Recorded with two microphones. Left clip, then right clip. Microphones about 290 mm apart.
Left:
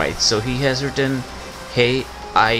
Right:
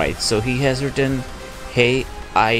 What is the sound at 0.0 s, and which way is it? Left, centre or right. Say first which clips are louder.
Speech: left 1 dB; centre.